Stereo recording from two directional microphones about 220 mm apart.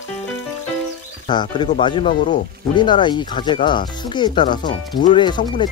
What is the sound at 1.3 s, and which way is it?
Speech, 20° left (ahead or behind).